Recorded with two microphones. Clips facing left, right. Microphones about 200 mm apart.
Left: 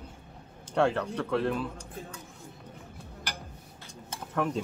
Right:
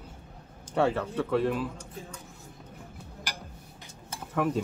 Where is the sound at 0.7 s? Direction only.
5° right (ahead or behind).